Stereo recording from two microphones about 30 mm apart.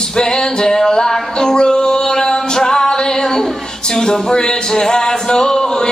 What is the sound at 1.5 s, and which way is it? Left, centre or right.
Music, left.